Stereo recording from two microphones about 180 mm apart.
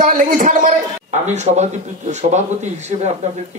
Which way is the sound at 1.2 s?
40° right (ahead or behind).